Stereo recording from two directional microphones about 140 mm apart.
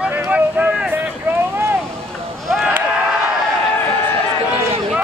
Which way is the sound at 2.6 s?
10° right (ahead or behind).